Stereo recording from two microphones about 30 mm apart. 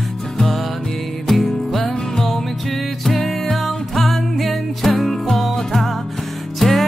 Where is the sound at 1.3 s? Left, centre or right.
Centre.